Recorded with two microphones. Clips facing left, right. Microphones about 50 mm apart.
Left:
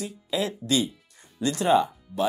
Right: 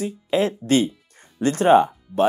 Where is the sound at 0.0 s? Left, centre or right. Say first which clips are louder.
Right 7 dB; right.